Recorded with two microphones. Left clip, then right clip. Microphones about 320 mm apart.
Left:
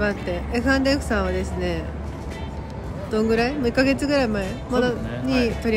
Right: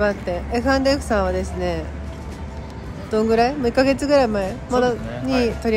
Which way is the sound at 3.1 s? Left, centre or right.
Centre.